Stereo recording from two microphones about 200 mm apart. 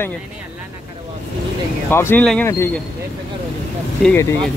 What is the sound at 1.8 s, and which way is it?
Speech, 10° left (ahead or behind).